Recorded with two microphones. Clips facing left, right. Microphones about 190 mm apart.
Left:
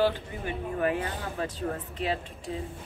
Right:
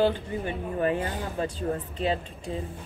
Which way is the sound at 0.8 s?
30° right (ahead or behind).